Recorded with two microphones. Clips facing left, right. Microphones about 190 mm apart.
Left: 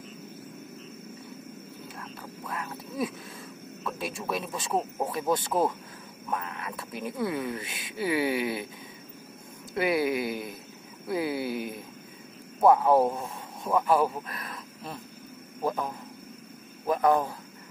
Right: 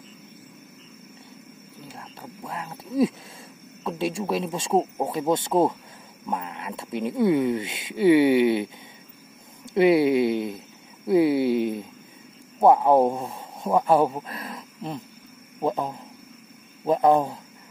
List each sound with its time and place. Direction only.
2.0 s duck: 25° right (ahead or behind)
3.8 s speech: 25° right (ahead or behind)
9.8 s speech: 25° right (ahead or behind)